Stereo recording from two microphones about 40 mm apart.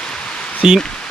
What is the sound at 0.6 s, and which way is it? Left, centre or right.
Speech, centre.